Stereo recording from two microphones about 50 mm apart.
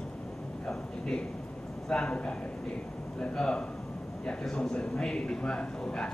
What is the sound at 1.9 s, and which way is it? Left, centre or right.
Speech, left.